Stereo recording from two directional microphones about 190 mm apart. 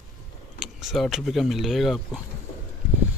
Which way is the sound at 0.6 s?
Centre (ahead or behind).